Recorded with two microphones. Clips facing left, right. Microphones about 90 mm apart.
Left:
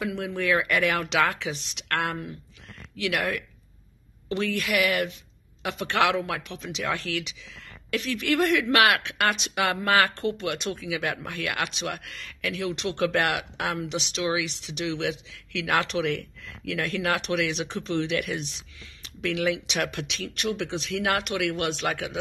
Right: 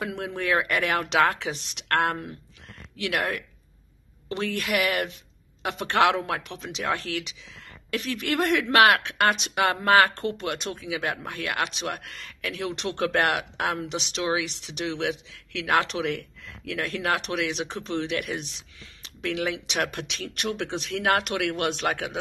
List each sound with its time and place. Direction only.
0.4 s speech: 35° right (ahead or behind)
6.4 s speech: 45° right (ahead or behind)